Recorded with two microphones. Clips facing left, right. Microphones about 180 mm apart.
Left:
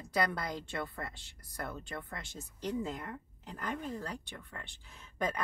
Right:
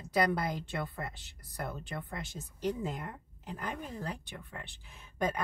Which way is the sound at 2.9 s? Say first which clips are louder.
Right 1 dB; 10° right (ahead or behind).